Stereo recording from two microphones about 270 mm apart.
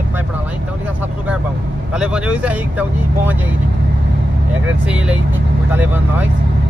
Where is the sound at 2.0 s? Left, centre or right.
Centre.